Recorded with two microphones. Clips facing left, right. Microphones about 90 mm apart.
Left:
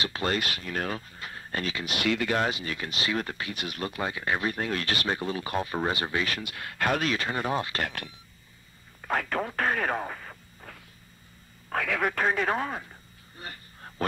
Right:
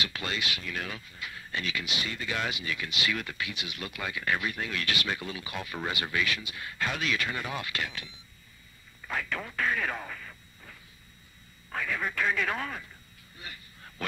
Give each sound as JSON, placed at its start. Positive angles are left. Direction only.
{"t": 0.0, "sound": "speech", "side_deg": 35}
{"t": 0.3, "sound": "speech", "side_deg": 45}
{"t": 2.0, "sound": "speech", "side_deg": 65}
{"t": 2.3, "sound": "speech", "side_deg": 40}
{"t": 4.5, "sound": "speech", "side_deg": 40}
{"t": 6.3, "sound": "speech", "side_deg": 60}
{"t": 7.8, "sound": "speech", "side_deg": 55}
{"t": 11.7, "sound": "speech", "side_deg": 75}
{"t": 12.2, "sound": "speech", "side_deg": 40}
{"t": 13.4, "sound": "a sound", "side_deg": 40}